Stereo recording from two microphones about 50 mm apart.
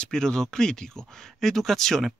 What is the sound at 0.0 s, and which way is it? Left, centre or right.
Speech, centre.